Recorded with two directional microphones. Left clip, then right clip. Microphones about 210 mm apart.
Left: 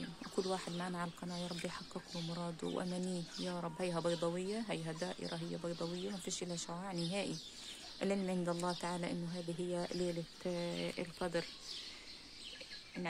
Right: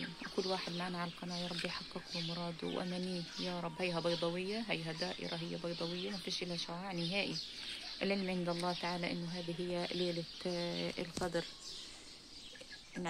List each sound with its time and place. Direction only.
0.4 s speech: centre (ahead or behind)